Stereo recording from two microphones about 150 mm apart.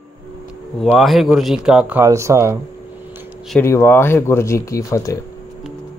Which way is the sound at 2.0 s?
20° right (ahead or behind).